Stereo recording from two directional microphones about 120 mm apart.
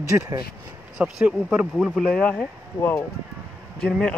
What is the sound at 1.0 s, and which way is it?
Speech, 5° right (ahead or behind).